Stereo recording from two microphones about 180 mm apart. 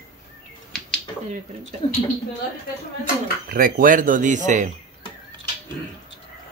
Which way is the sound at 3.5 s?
55° right (ahead or behind).